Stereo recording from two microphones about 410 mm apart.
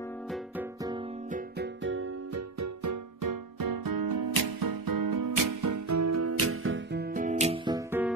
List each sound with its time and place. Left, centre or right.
0.3 s music: centre
1.3 s music: right; by 8.1 s centre